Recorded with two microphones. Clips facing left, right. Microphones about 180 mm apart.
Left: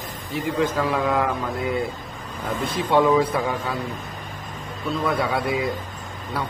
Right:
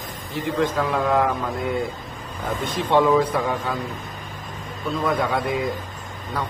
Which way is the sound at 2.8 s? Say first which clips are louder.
Even; 10° left (ahead or behind).